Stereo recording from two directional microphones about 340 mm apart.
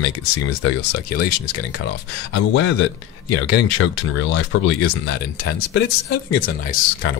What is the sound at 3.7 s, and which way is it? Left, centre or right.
Speech, left.